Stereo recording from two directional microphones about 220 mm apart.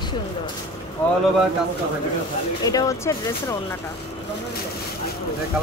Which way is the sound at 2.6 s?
15° left (ahead or behind).